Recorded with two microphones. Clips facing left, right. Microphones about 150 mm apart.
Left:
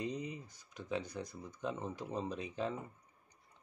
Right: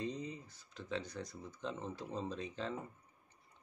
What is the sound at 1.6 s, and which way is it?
Speech, 10° left (ahead or behind).